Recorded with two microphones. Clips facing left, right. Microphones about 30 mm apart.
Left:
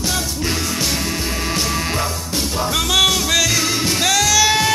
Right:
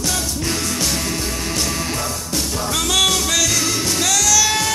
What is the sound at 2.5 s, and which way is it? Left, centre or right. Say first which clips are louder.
Music: left 2 dB; centre.